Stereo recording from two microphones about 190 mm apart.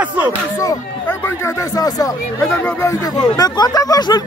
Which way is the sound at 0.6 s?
15° left (ahead or behind).